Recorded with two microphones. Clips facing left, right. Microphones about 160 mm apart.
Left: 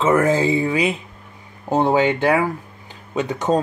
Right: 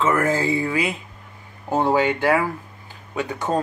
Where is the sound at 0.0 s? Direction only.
20° left (ahead or behind).